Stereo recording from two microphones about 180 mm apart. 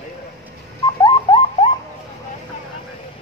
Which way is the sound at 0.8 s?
25° left (ahead or behind).